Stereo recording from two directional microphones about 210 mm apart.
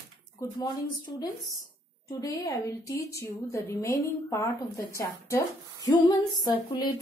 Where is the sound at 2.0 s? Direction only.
15° left (ahead or behind).